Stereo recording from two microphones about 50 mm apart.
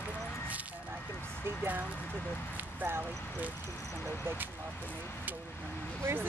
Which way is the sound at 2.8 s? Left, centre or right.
Right.